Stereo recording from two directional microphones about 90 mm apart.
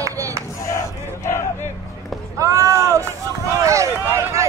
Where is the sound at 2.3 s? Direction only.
35° right (ahead or behind).